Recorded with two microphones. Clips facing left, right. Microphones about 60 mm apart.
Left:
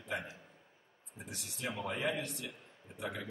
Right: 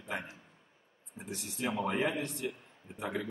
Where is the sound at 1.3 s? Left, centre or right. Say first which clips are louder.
Right 6 dB; right.